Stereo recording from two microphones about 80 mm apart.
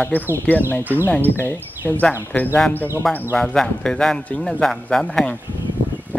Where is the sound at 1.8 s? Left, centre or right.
Centre.